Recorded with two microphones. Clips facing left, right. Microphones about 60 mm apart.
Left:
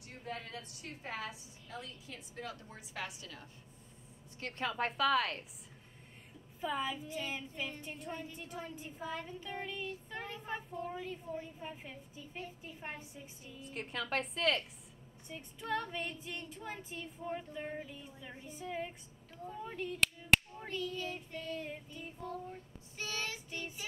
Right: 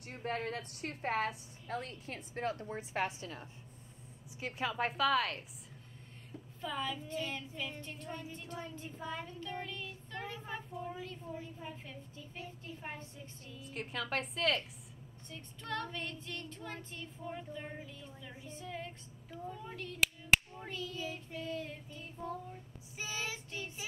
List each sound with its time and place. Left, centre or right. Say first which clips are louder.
0.1 s a woman's voice: right 6 dB; right
4.4 s a woman's voice: right 1 dB; centre
6.6 s child singing: left 2 dB; centre
10.4 s a woman's voice: left 2 dB; centre
10.9 s child singing: left 2 dB; centre
13.6 s a woman's voice: even; centre
15.2 s child singing: left 4 dB; centre
20.0 s child singing: even; centre
21.5 s child singing: even; centre
22.9 s child singing: even; centre